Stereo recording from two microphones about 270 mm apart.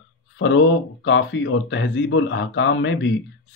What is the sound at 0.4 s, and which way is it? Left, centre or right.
A man's voice, left.